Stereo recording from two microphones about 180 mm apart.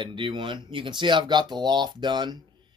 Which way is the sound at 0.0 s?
25° right (ahead or behind).